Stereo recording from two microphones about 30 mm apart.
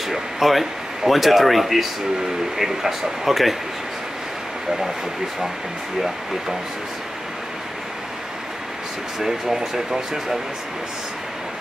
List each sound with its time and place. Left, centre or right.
0.1 s speech: centre
9.2 s speech: centre